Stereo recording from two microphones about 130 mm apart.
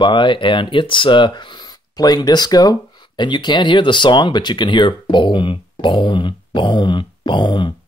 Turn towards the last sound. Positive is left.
turn(degrees=35)  # may be behind; listen again after turning